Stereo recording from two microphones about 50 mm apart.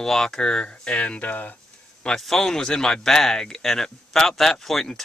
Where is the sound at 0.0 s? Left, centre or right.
Centre.